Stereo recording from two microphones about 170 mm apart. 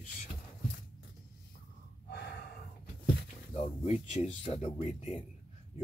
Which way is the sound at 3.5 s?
40° left (ahead or behind).